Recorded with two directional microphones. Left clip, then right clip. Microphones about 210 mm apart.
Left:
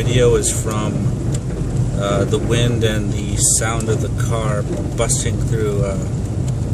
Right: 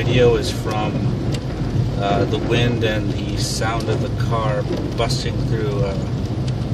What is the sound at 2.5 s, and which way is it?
Speech, 20° left (ahead or behind).